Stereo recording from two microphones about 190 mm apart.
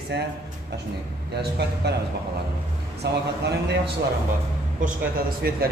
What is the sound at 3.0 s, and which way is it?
Speech, 60° right (ahead or behind).